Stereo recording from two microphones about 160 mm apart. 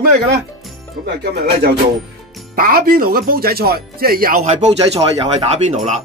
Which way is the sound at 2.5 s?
65° right (ahead or behind).